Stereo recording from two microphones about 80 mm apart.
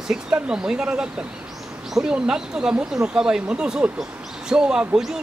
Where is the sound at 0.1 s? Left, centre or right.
Centre.